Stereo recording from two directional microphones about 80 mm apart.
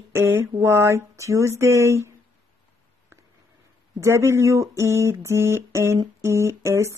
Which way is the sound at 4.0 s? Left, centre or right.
Right.